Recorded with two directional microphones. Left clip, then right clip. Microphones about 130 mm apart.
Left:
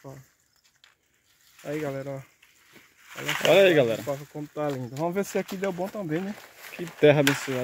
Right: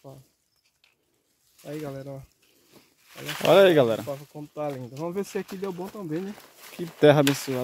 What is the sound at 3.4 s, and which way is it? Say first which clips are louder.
Speech: right 1 dB; 40° right (ahead or behind).